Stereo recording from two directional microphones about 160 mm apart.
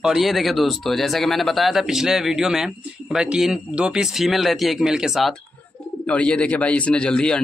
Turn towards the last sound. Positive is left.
turn(degrees=5)  # may be behind; listen again after turning